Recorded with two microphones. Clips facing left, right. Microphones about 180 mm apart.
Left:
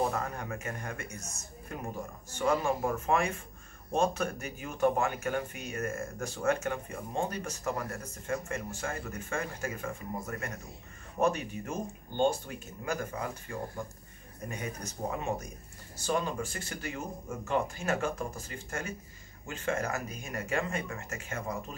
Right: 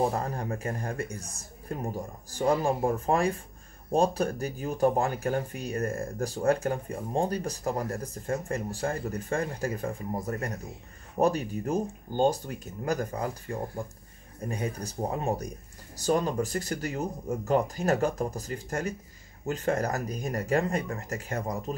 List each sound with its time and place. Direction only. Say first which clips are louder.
0.0 s speech: right 4 dB; 35° right (ahead or behind)